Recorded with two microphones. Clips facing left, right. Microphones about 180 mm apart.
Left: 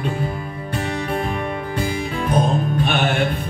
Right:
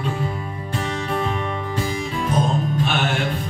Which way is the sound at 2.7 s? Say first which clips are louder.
Left 3 dB; 55° left (ahead or behind).